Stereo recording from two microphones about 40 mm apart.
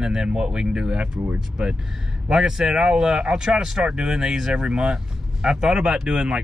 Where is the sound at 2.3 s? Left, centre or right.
Centre.